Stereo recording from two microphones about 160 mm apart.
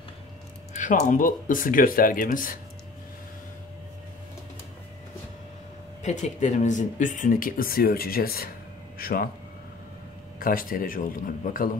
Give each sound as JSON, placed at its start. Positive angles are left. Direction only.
{"t": 0.7, "sound": "speech", "side_deg": 50}
{"t": 6.0, "sound": "speech", "side_deg": 45}
{"t": 10.4, "sound": "speech", "side_deg": 65}